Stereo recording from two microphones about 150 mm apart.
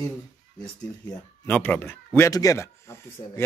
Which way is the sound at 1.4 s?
10° left (ahead or behind).